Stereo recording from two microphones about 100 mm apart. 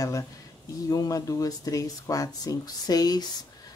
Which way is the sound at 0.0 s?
35° left (ahead or behind).